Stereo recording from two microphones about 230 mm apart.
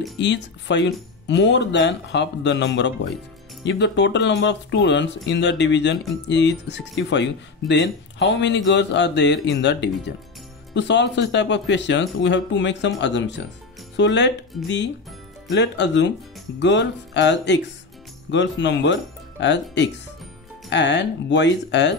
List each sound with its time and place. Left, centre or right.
0.2 s speech: left
14.5 s speech: centre
15.6 s speech: left